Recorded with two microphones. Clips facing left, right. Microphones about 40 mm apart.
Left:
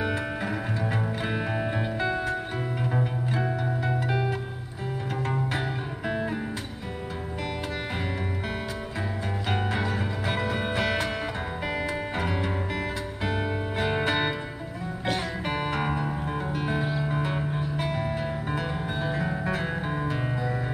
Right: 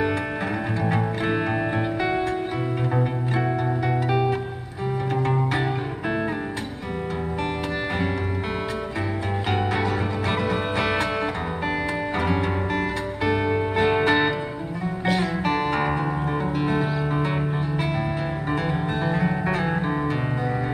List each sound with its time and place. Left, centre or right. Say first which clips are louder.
0.9 s music: right 5 dB; right
4.1 s music: right 8 dB; right
10.8 s music: right 3 dB; centre
12.2 s music: right 6 dB; right
13.2 s music: right 7 dB; right
13.7 s music: right 6 dB; right
15.4 s music: right 5 dB; centre
15.8 s music: right 5 dB; right